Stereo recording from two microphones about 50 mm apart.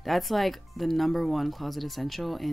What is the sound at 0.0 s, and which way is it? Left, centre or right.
Speech, centre.